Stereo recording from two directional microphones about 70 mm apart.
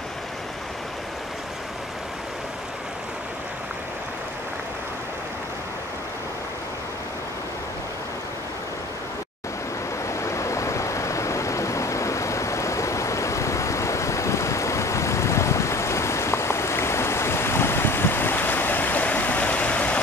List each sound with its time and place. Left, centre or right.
10.0 s stream: left